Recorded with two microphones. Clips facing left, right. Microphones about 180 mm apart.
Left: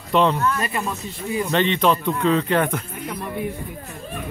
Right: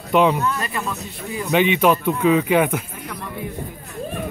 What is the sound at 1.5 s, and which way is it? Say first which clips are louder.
Speech: right 4 dB; 10° right (ahead or behind).